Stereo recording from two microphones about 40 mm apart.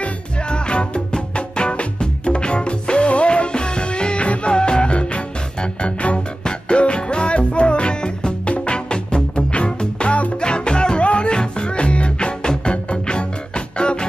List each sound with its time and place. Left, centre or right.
0.5 s music: left